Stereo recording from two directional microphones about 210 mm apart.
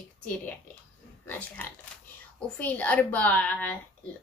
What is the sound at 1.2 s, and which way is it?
A woman's voice, 10° left (ahead or behind).